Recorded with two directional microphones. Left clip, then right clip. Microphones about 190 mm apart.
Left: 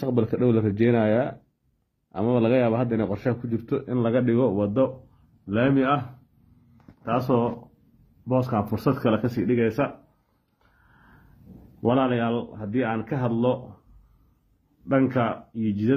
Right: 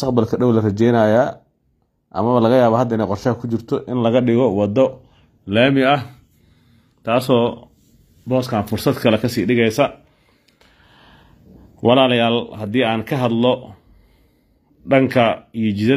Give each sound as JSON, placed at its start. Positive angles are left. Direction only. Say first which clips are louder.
{"t": 0.3, "sound": "speech", "louder": "right 6 dB", "side_deg": 0}
{"t": 2.2, "sound": "a man's voice", "louder": "right 8 dB", "side_deg": -15}
{"t": 7.0, "sound": "speech", "louder": "right 8 dB", "side_deg": -25}
{"t": 11.8, "sound": "speech", "louder": "right 9 dB", "side_deg": -30}
{"t": 14.9, "sound": "speech", "louder": "right 9 dB", "side_deg": -35}